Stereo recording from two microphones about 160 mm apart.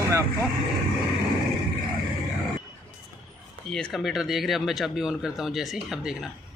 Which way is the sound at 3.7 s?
5° left (ahead or behind).